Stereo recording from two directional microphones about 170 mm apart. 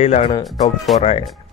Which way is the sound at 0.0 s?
40° left (ahead or behind).